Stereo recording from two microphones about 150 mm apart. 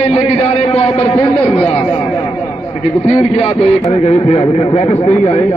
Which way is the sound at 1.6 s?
35° left (ahead or behind).